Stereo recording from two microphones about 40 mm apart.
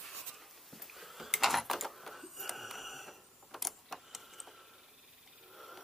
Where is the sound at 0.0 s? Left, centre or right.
Centre.